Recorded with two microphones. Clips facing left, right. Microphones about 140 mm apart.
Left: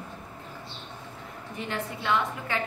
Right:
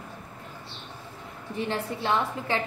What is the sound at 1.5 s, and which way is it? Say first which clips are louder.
A woman's voice: right 4 dB; 30° right (ahead or behind).